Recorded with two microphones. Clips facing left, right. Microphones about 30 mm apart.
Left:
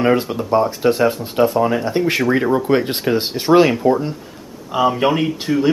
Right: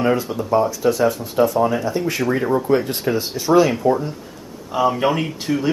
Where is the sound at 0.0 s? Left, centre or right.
Left.